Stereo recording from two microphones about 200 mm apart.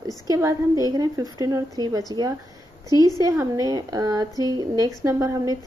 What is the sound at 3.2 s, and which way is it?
A woman's voice, 15° right (ahead or behind).